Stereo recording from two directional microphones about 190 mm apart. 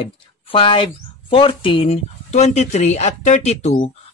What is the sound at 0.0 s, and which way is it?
Speech, 25° left (ahead or behind).